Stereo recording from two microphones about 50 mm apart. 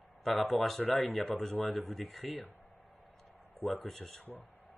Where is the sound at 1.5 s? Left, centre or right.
Left.